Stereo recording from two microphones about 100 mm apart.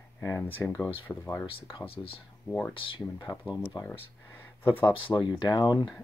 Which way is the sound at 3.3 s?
40° left (ahead or behind).